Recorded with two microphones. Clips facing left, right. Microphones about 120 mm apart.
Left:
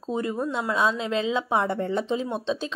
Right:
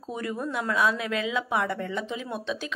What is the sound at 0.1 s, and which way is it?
A woman's voice, 25° left (ahead or behind).